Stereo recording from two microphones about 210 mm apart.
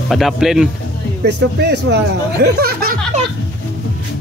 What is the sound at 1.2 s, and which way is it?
Speech, 55° right (ahead or behind).